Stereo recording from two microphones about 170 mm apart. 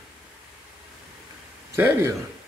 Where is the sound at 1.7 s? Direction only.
15° right (ahead or behind).